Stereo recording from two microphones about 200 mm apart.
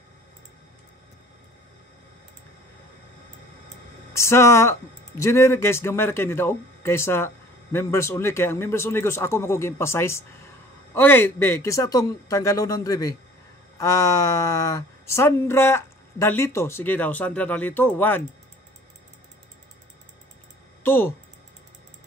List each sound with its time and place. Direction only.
4.1 s speech: 15° left (ahead or behind)
20.8 s speech: 10° left (ahead or behind)